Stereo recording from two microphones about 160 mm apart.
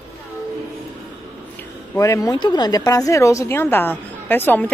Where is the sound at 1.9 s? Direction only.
20° left (ahead or behind).